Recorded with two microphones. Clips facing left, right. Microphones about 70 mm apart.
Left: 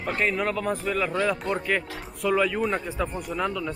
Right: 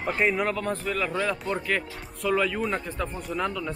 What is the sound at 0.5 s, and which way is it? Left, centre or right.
Speech, centre.